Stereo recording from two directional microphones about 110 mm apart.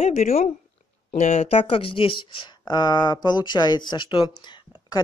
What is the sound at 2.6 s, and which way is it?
Speech, 40° left (ahead or behind).